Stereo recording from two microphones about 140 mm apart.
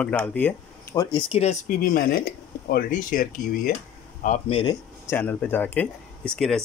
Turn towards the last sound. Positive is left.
turn(degrees=5)  # may be behind; listen again after turning